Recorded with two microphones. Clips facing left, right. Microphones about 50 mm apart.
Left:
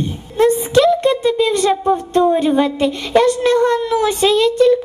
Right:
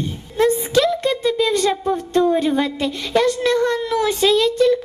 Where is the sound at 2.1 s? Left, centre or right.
Centre.